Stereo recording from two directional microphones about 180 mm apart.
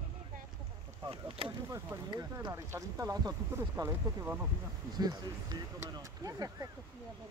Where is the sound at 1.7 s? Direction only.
20° right (ahead or behind).